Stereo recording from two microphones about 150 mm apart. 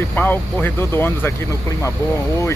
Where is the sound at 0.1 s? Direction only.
10° left (ahead or behind).